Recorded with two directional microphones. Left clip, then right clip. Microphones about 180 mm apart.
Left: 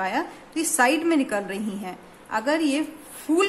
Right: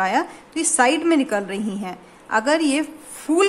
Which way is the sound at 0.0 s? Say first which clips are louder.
Right 6 dB; 25° right (ahead or behind).